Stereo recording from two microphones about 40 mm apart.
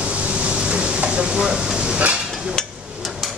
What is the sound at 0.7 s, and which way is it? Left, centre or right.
Stir, right.